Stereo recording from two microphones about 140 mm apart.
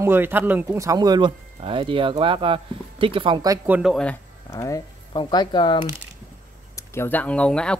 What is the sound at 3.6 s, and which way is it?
Speech, 10° right (ahead or behind).